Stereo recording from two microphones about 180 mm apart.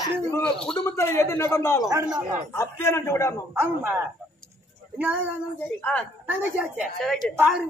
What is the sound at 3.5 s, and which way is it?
Speech, 15° right (ahead or behind).